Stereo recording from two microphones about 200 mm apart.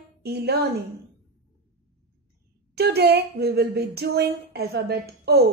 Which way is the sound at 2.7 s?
55° right (ahead or behind).